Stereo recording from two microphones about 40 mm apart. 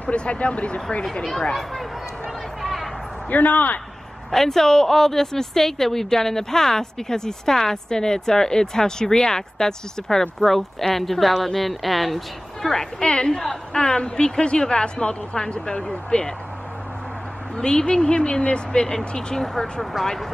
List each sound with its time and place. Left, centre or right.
0.1 s a woman's voice: left
1.5 s speech: centre
2.6 s a sound: centre
3.3 s a man's voice: left
4.3 s a woman's voice: centre
13.0 s a woman's voice: left
17.6 s a woman's voice: left
19.4 s speech: centre